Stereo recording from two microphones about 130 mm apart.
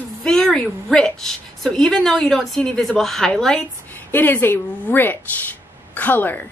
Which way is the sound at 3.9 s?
15° left (ahead or behind).